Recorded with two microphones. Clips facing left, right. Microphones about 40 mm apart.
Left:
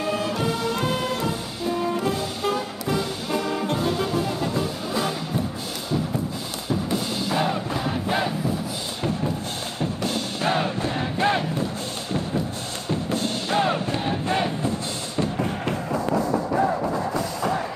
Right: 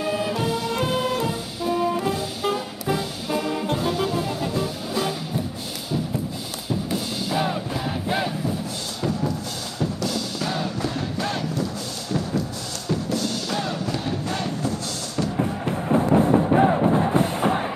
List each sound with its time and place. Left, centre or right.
0.0 s music: centre
6.9 s music: centre
9.8 s music: left
15.4 s music: left